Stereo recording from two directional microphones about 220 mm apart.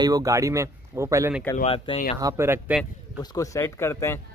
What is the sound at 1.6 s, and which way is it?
Speech, 25° left (ahead or behind).